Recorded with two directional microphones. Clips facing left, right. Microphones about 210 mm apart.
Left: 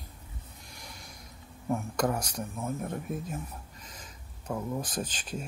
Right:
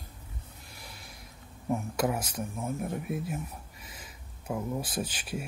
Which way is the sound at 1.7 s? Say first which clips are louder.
Even; 5° right (ahead or behind).